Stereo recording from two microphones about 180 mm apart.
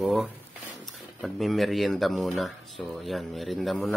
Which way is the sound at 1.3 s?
Centre (ahead or behind).